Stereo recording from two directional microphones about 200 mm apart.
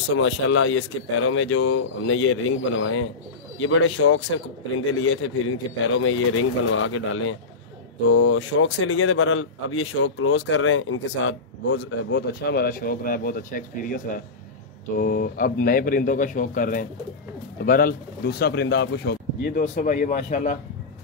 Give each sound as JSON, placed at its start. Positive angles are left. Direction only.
{"t": 0.2, "sound": "a man's voice", "side_deg": 75}
{"t": 19.6, "sound": "speech", "side_deg": 40}